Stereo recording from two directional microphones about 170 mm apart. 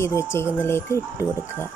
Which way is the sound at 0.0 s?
15° left (ahead or behind).